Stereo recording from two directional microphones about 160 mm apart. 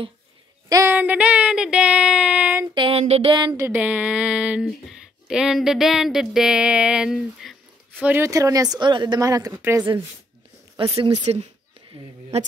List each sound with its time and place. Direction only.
0.7 s a sound: 20° right (ahead or behind)
0.9 s child singing: 10° right (ahead or behind)
2.7 s speech: 35° right (ahead or behind)
3.6 s child singing: 10° right (ahead or behind)
5.3 s speech: 5° right (ahead or behind)
8.1 s speech: 20° right (ahead or behind)
10.8 s a woman's voice: 35° right (ahead or behind)